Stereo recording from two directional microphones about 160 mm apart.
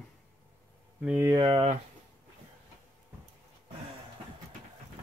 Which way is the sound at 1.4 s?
30° right (ahead or behind).